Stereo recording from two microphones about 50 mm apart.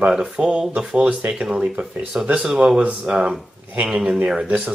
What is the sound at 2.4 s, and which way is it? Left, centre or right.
Speech, centre.